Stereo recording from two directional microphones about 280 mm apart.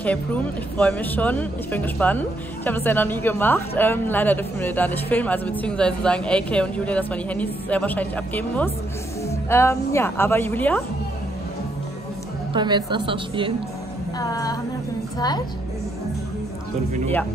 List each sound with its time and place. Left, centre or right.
0.0 s speech: centre
12.5 s a woman's voice: centre
14.1 s speech: centre